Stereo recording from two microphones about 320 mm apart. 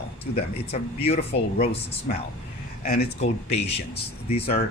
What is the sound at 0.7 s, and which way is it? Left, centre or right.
Speech, centre.